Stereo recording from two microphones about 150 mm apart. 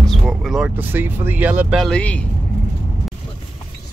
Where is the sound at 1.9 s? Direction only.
10° left (ahead or behind).